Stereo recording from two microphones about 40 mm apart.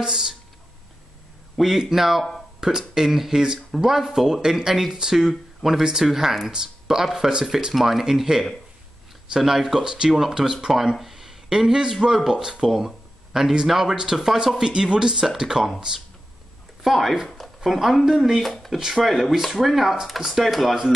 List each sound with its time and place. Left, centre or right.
0.0 s speech: centre
1.6 s speech: centre
14.6 s speech: right
16.8 s speech: centre
18.8 s speech: centre